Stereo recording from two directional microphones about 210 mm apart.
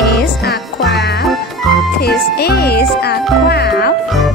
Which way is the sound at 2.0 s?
50° left (ahead or behind).